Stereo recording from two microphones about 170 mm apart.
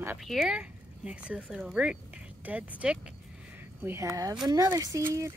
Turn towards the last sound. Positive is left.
turn(degrees=-20)  # may be behind; listen again after turning